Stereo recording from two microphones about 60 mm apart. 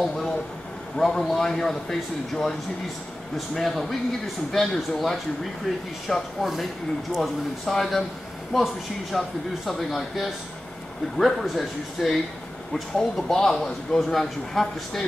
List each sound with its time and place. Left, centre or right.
0.0 s a sound: centre
0.9 s a man's voice: centre
9.1 s speech: centre